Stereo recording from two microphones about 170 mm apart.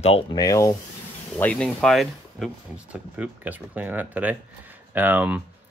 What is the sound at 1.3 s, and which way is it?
Speech, 10° left (ahead or behind).